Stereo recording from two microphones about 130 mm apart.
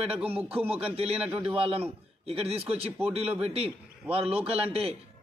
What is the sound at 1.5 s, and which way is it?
A man's voice, 45° right (ahead or behind).